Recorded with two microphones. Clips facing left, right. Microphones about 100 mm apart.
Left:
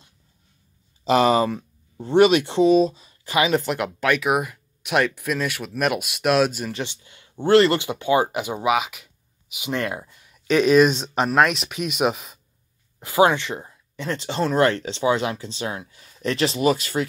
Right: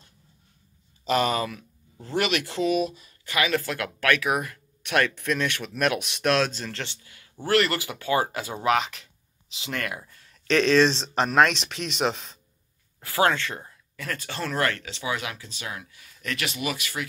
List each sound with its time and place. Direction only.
1.1 s speech: 35° left (ahead or behind)